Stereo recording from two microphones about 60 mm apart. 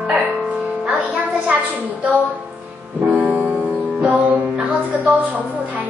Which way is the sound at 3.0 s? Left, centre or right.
Right.